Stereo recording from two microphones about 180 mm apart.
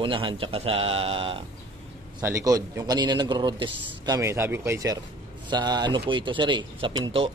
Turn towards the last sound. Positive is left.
turn(degrees=-30)  # may be behind; listen again after turning